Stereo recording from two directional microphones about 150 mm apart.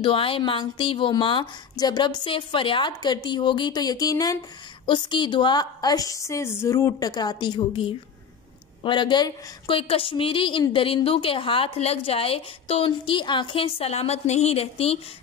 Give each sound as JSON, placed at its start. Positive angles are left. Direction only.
{"t": 0.0, "sound": "a woman's voice", "side_deg": 35}